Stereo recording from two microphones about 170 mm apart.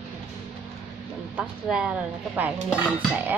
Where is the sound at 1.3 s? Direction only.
5° right (ahead or behind).